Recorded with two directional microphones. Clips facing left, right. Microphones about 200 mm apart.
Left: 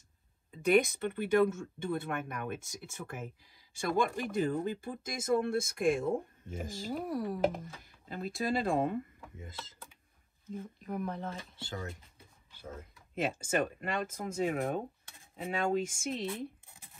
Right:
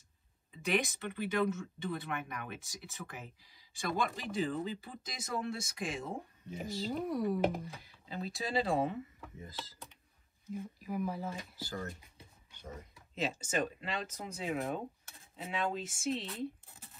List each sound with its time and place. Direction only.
0.7 s speech: 50° left (ahead or behind)
6.9 s speech: 5° left (ahead or behind)
7.6 s speech: 50° left (ahead or behind)
10.5 s speech: 5° right (ahead or behind)
12.5 s speech: 5° left (ahead or behind)
13.1 s speech: 55° left (ahead or behind)